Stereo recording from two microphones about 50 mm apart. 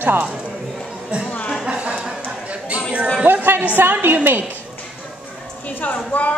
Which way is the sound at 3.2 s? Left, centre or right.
Right.